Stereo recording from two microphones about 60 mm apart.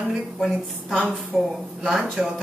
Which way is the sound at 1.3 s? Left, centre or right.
Centre.